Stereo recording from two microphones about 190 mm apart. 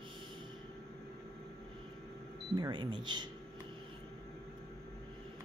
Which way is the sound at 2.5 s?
25° right (ahead or behind).